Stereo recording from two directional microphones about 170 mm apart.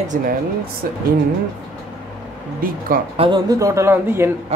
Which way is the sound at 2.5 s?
55° right (ahead or behind).